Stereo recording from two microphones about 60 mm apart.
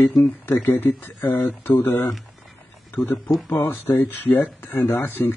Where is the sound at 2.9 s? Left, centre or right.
Left.